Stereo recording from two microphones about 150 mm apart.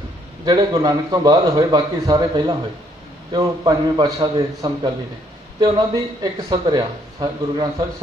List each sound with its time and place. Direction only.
0.5 s speech: 25° right (ahead or behind)